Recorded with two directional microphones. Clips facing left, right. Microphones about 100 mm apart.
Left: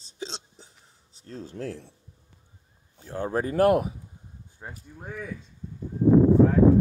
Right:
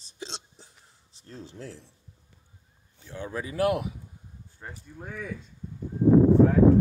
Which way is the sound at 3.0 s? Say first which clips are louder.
Left 7 dB; 45° left (ahead or behind).